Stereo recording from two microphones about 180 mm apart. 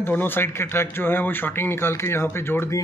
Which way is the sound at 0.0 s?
10° left (ahead or behind).